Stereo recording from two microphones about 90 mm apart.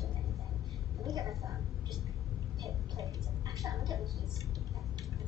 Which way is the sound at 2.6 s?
40° right (ahead or behind).